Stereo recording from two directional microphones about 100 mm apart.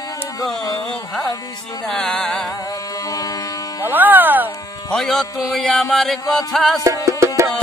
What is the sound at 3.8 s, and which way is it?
Speech, 20° right (ahead or behind).